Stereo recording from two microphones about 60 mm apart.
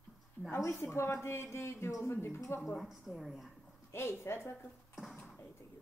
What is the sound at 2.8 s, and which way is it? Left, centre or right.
Speech, centre.